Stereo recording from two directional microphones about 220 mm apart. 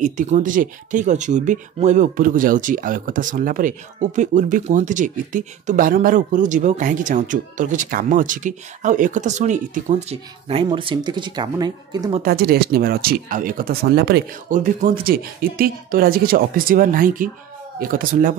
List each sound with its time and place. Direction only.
0.0 s speech: 35° right (ahead or behind); by 12.2 s 20° right (ahead or behind)
12.2 s speech: 45° right (ahead or behind)